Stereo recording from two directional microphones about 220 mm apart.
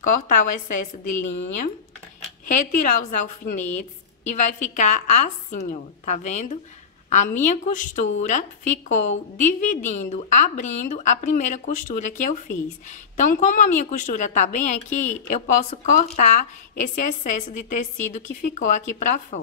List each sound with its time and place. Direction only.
0.0 s a woman's voice: 35° left (ahead or behind)
2.4 s a woman's voice: 35° left (ahead or behind)